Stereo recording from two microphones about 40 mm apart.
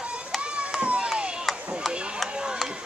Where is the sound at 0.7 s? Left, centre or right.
Right.